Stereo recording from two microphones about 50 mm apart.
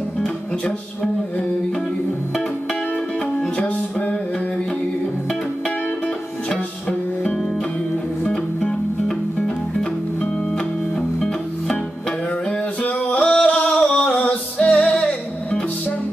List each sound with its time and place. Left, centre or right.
3.3 s music: left
6.5 s music: left
12.8 s music: left
14.1 s music: left
14.7 s music: centre